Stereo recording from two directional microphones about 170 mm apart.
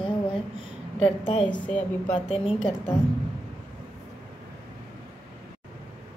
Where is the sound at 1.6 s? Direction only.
10° left (ahead or behind).